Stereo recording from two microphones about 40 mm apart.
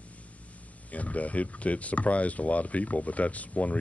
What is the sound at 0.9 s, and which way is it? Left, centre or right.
Speech, left.